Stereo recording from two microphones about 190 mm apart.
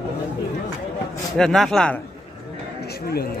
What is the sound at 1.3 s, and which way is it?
Speech, 5° left (ahead or behind).